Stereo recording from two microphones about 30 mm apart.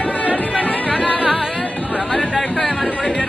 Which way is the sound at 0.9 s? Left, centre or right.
Left.